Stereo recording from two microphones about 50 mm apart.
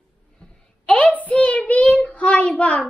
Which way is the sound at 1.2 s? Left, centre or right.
Left.